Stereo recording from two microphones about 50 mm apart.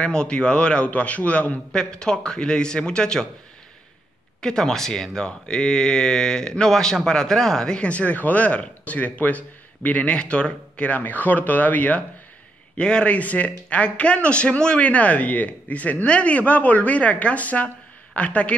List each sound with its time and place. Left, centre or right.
0.0 s speech: centre
1.7 s speech: centre
4.4 s speech: centre; by 12.0 s left
12.7 s a woman's voice: left